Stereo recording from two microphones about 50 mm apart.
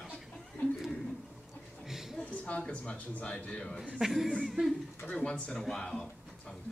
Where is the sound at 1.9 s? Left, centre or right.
Centre.